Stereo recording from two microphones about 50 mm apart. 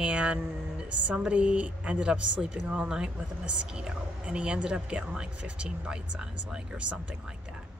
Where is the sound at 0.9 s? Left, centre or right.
Right.